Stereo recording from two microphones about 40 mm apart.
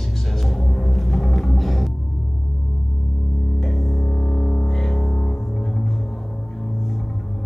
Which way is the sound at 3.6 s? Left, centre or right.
Centre.